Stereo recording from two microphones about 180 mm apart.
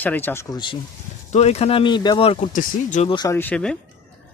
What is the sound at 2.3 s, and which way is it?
Speech, 45° left (ahead or behind).